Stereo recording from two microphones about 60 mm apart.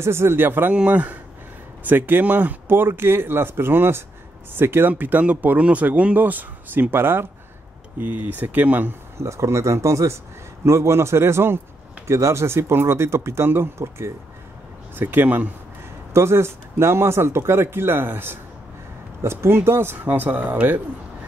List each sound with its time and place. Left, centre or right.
0.0 s speech: right
0.7 s speech: right
4.9 s speech: right
9.2 s speech: right
15.0 s speech: right
16.1 s speech: right